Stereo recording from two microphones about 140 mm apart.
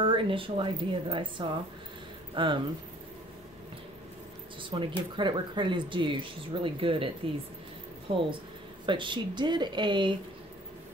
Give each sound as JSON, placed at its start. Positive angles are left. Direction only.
{"t": 0.0, "sound": "speech", "side_deg": -40}
{"t": 4.6, "sound": "speech", "side_deg": -35}
{"t": 8.1, "sound": "speech", "side_deg": -45}